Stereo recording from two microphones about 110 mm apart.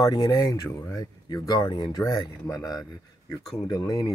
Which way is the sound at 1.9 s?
35° left (ahead or behind).